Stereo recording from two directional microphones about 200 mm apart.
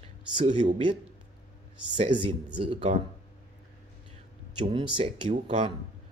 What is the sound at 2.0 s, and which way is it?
Speech, 25° right (ahead or behind).